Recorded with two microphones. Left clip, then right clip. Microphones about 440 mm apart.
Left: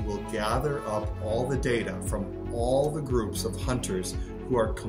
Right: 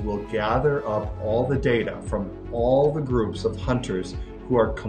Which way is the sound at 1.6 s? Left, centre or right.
Left.